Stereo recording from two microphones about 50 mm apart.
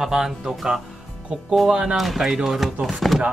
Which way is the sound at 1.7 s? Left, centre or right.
Centre.